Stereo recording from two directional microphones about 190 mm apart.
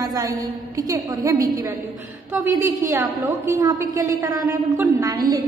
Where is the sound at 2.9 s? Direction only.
15° right (ahead or behind).